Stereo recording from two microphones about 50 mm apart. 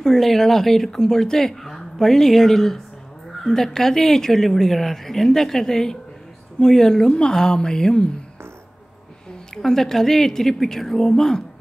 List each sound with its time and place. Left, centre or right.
0.0 s speech: centre
9.5 s speech: centre